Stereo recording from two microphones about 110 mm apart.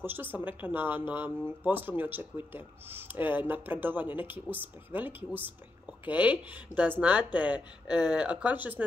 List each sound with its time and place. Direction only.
0.0 s speech: 20° right (ahead or behind)